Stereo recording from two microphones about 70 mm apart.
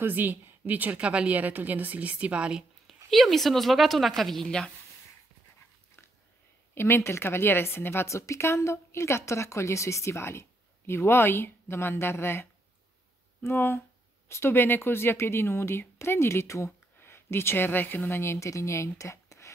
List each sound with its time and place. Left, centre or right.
0.0 s a woman's voice: right
3.1 s a woman's voice: centre
6.7 s a woman's voice: left